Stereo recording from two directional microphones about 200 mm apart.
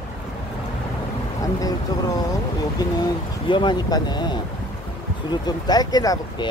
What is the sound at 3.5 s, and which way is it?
Speech, 25° left (ahead or behind).